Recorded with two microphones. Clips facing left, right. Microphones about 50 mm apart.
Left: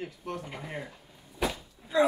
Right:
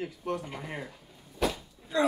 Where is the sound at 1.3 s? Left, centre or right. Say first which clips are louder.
Right 1 dB; centre.